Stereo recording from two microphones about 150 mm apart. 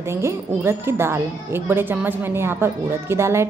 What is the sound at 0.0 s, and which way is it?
A woman's voice, 20° right (ahead or behind).